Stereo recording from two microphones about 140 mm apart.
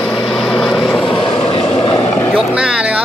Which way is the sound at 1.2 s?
40° left (ahead or behind).